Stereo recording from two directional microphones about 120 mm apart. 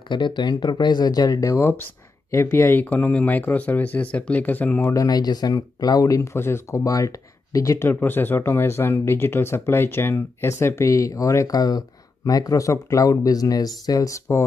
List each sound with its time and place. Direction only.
0.1 s speech: 40° left (ahead or behind); by 4.9 s 15° left (ahead or behind)
4.9 s speech: 30° left (ahead or behind)